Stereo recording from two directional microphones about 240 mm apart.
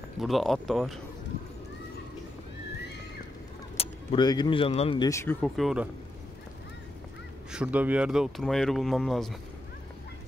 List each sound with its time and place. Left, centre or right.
0.2 s speech: centre
3.7 s speech: left; by 5.9 s centre
7.5 s speech: centre